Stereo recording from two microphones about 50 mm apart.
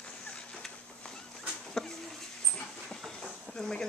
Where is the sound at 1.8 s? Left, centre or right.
Centre.